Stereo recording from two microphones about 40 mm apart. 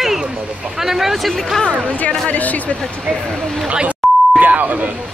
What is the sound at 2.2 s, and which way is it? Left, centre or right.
Speech, left.